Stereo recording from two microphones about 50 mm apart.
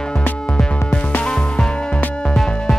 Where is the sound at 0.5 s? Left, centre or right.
Left.